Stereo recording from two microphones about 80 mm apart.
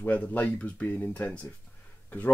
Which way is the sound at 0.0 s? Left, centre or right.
Centre.